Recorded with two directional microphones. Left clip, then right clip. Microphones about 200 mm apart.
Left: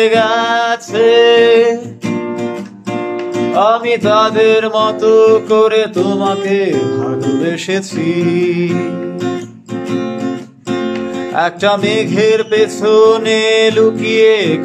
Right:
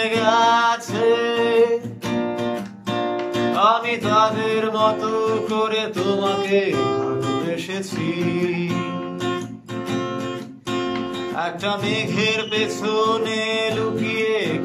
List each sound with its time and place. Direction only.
0.0 s singing: 45° left (ahead or behind)
2.0 s music: 5° left (ahead or behind)
3.5 s music: 40° left (ahead or behind)
11.3 s music: 45° left (ahead or behind)